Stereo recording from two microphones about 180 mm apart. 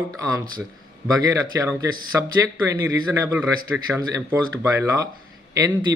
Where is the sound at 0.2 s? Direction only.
20° right (ahead or behind).